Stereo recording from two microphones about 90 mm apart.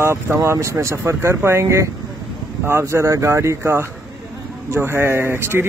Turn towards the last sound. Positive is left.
turn(degrees=-25)  # may be behind; listen again after turning